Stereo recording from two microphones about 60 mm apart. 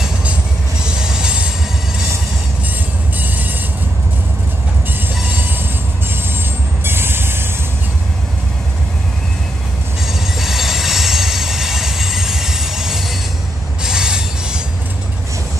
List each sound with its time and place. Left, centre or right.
0.8 s train: centre
3.2 s train: right
6.8 s train: right
10.0 s train: centre
13.8 s train wheels squealing: centre